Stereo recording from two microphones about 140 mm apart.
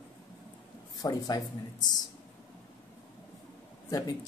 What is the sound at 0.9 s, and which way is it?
Speech, 25° left (ahead or behind).